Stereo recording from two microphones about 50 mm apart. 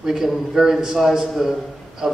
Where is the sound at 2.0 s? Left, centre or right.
Centre.